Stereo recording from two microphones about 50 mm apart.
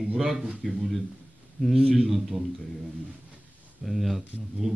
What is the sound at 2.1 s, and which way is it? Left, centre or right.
Speech, centre.